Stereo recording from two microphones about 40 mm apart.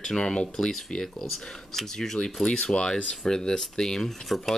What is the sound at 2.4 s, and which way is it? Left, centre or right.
Speech, left.